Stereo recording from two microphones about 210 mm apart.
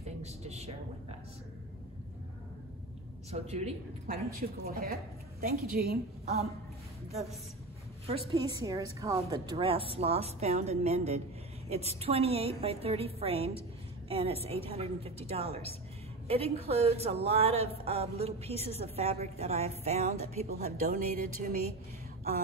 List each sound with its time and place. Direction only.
0.2 s a woman's voice: 30° right (ahead or behind)
3.3 s a woman's voice: 30° right (ahead or behind)
4.4 s speech: 45° right (ahead or behind)
8.3 s a woman's voice: 15° right (ahead or behind)
20.8 s a woman's voice: 40° right (ahead or behind)